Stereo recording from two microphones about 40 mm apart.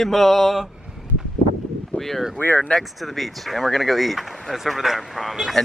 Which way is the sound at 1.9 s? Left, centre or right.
Centre.